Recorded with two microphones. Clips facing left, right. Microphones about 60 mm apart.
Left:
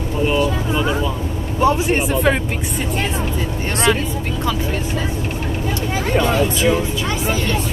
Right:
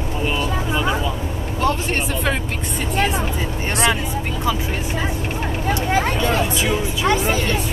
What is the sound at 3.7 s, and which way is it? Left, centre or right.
Speech, right.